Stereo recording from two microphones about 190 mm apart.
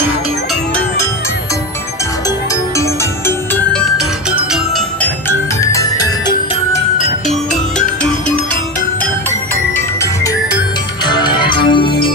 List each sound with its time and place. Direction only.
2.8 s music: 10° left (ahead or behind)
4.5 s music: centre (ahead or behind)
5.6 s music: 15° left (ahead or behind)
11.1 s music: 25° left (ahead or behind)